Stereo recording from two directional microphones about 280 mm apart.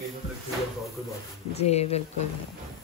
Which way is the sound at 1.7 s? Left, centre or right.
Left.